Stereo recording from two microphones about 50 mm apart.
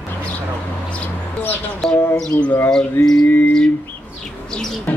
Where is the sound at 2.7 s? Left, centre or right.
Centre.